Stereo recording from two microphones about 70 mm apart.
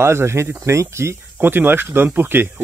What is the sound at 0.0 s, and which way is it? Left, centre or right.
Speech, right.